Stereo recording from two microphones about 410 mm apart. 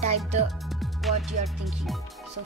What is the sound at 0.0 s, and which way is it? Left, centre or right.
Speech, centre.